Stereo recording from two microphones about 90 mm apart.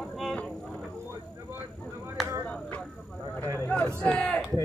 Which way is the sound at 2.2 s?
Centre (ahead or behind).